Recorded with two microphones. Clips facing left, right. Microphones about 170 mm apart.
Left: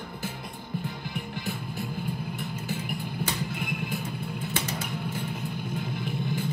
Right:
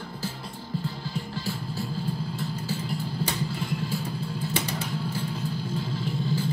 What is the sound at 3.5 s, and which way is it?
Music, 20° left (ahead or behind).